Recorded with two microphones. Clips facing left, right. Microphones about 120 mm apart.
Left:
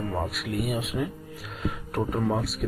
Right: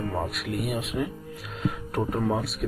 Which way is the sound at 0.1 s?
Centre (ahead or behind).